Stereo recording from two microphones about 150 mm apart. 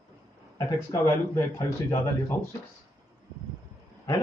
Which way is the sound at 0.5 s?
20° left (ahead or behind).